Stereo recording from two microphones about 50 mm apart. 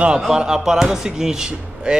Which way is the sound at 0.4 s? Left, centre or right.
Centre.